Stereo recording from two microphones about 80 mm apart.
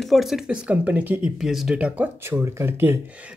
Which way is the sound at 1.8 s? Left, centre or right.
Centre.